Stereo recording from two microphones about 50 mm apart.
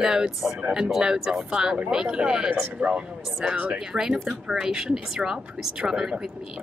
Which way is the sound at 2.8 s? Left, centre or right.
Right.